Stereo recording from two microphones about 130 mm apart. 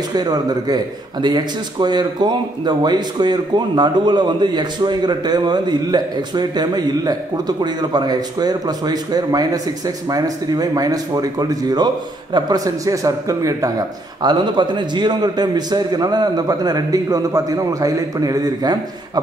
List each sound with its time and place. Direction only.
0.1 s a man's voice: 30° right (ahead or behind)